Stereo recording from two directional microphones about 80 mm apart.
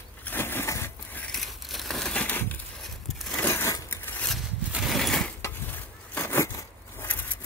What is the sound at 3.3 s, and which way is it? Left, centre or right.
Crushing, left.